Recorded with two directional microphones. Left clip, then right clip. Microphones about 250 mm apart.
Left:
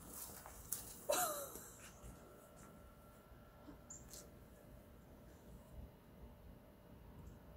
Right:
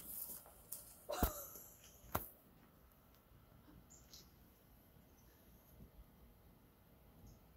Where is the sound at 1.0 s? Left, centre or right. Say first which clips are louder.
Left 4 dB; left.